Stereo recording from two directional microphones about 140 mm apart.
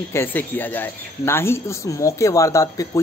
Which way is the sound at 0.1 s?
15° left (ahead or behind).